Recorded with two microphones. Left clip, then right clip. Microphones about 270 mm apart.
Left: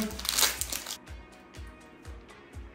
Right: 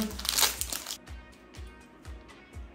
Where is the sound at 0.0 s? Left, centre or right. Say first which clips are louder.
Even; centre.